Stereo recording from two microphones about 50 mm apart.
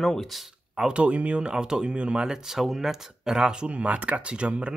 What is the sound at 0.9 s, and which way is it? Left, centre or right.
Speech, right.